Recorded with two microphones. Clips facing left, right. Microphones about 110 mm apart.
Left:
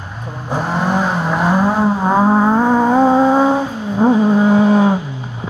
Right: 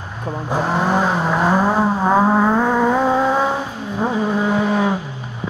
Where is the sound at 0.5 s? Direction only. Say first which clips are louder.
Left 1 dB; centre (ahead or behind).